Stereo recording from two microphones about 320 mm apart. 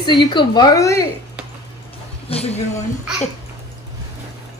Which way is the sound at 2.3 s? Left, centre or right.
Centre.